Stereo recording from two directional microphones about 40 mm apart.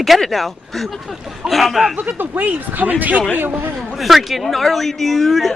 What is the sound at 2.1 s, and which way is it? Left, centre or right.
Speech, right.